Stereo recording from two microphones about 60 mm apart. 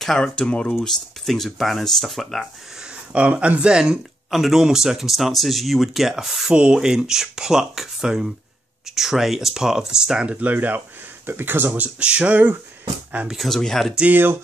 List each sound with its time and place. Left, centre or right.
0.0 s speech: centre
0.4 s speech: centre
0.7 s speech: centre
2.8 s speech: centre
4.3 s speech: centre
10.2 s speech: right
12.0 s speech: centre
13.3 s speech: centre